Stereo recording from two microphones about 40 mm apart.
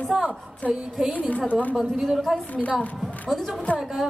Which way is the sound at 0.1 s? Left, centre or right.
Centre.